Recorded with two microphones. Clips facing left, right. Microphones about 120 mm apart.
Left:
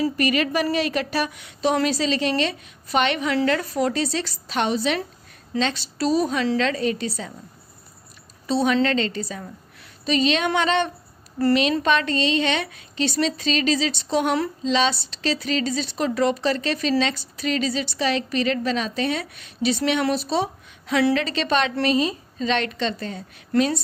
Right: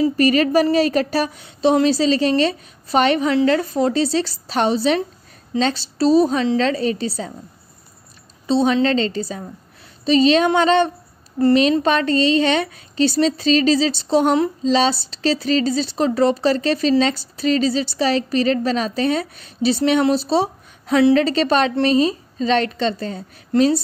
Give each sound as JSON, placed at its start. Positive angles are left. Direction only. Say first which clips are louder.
{"t": 0.2, "sound": "a woman's voice", "louder": "right 7 dB", "side_deg": -35}
{"t": 8.5, "sound": "a woman's voice", "louder": "right 4 dB", "side_deg": -25}